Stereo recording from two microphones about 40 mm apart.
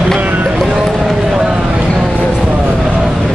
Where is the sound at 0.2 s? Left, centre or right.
Right.